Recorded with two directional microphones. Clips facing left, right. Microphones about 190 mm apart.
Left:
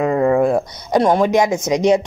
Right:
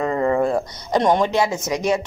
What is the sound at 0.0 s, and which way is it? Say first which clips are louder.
Speech: left 4 dB; 10° left (ahead or behind).